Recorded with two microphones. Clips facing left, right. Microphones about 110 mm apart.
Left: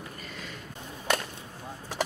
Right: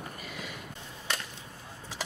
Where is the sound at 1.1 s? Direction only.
55° left (ahead or behind).